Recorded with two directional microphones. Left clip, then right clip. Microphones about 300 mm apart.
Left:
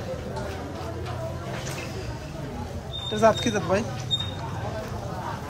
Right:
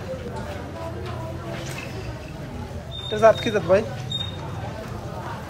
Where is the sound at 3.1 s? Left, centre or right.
Centre.